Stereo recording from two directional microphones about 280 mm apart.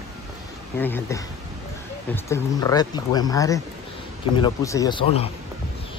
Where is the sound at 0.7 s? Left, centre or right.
Centre.